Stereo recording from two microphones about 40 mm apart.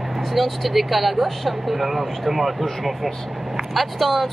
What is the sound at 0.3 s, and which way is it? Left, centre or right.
Speech, centre.